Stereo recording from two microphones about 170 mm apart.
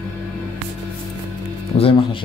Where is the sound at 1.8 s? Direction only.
35° left (ahead or behind).